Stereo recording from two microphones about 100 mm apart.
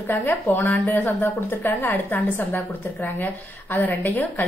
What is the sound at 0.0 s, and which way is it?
Speech, 20° left (ahead or behind).